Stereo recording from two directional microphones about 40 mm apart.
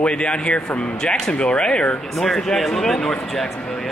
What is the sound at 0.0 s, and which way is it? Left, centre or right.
Speech, left.